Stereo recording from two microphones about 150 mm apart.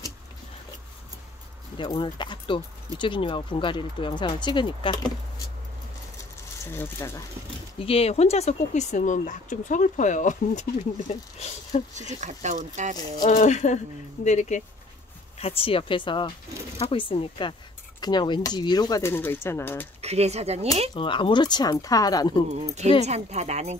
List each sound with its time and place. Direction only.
1.8 s speech: 30° left (ahead or behind)
6.6 s speech: 15° left (ahead or behind)
7.8 s speech: 40° left (ahead or behind)
12.1 s speech: 55° right (ahead or behind)
13.2 s speech: 55° left (ahead or behind)
15.3 s speech: 40° left (ahead or behind); by 19.9 s 15° left (ahead or behind)
20.0 s speech: 45° right (ahead or behind)
20.9 s speech: 35° left (ahead or behind)
22.6 s speech: 50° right (ahead or behind)